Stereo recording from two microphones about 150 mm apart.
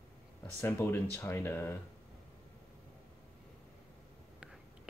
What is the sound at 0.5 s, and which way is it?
Speech, 15° left (ahead or behind).